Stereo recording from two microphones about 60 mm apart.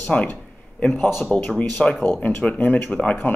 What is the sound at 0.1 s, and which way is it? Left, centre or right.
Speech, centre.